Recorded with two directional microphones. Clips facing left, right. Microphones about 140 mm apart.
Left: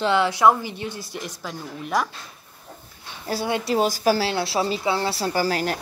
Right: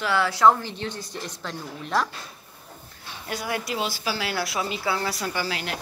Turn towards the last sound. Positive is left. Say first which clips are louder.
# left 6 dB
turn(degrees=40)  # may be behind; listen again after turning